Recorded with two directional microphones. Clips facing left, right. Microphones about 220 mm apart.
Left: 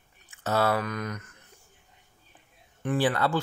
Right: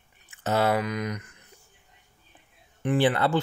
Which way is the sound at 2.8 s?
20° right (ahead or behind).